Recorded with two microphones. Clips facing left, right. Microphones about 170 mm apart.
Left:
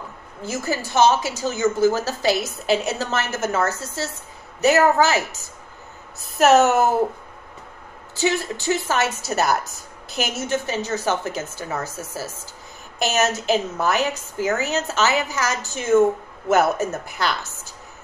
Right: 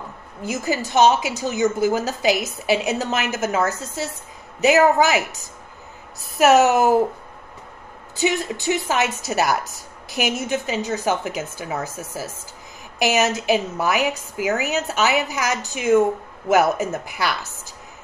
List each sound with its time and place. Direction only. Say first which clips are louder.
0.4 s a woman's voice: right 2 dB; 15° right (ahead or behind)
6.3 s a woman's voice: even; 10° right (ahead or behind)
8.2 s a woman's voice: even; 15° right (ahead or behind)